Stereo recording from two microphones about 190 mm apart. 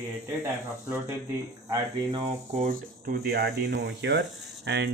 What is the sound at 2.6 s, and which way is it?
Speech, 50° right (ahead or behind).